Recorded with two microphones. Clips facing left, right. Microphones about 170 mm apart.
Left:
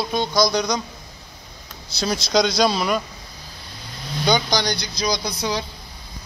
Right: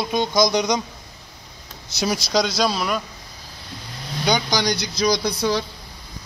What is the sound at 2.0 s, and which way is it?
Speech, 10° right (ahead or behind).